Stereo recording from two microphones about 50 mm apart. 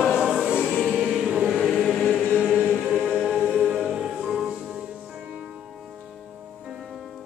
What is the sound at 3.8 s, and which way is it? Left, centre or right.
Music, centre.